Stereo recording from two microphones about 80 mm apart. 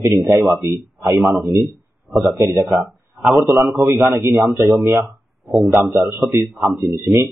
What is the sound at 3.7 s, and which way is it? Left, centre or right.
Speech, right.